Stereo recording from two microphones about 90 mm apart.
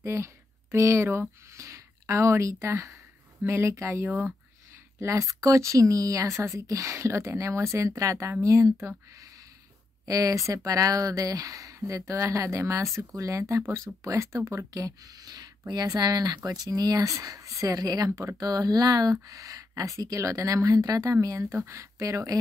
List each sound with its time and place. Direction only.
0.0 s speech: 30° right (ahead or behind)
10.0 s speech: 40° right (ahead or behind)